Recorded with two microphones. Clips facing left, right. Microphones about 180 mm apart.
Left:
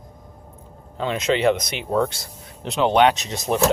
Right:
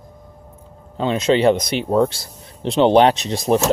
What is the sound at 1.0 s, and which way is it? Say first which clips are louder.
Speech: right 4 dB; 30° right (ahead or behind).